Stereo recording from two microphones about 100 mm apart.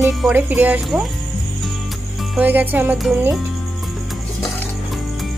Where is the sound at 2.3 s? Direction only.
20° right (ahead or behind).